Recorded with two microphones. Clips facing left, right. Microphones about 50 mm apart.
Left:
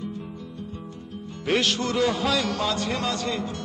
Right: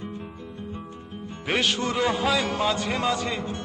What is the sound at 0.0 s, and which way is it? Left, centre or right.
Music, right.